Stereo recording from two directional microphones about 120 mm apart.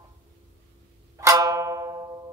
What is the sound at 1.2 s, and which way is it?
Music, 30° right (ahead or behind).